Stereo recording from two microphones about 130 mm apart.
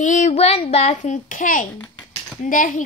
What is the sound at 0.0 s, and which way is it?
A child's voice, 70° left (ahead or behind).